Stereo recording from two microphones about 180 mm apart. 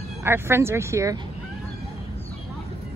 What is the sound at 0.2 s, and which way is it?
Speech, 15° right (ahead or behind).